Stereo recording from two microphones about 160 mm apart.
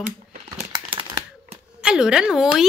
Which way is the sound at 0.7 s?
30° right (ahead or behind).